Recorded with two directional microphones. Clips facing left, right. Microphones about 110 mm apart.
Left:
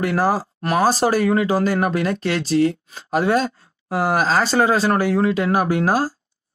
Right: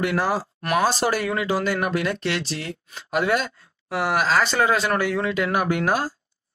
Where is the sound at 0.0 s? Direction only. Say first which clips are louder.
Left 4 dB; 40° left (ahead or behind).